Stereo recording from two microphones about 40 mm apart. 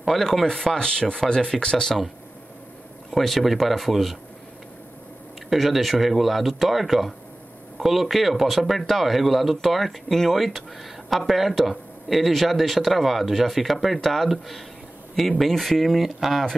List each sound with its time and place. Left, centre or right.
0.1 s speech: centre
3.2 s speech: centre
5.5 s speech: centre